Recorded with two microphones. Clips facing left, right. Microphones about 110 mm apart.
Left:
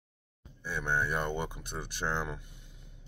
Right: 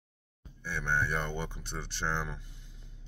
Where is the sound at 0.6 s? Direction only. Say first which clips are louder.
Even; 10° left (ahead or behind).